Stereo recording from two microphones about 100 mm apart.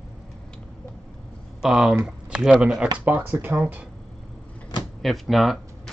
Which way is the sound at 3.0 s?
20° right (ahead or behind).